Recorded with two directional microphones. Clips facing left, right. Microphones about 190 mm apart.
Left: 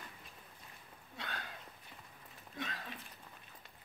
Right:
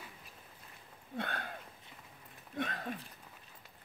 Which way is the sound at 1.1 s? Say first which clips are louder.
Right 7 dB; 55° right (ahead or behind).